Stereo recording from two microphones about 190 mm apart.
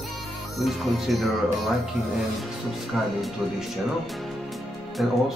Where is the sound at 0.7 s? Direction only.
Centre (ahead or behind).